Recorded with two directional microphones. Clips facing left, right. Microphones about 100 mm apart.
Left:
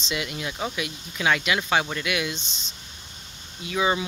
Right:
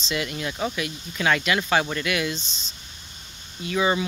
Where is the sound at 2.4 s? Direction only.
65° left (ahead or behind).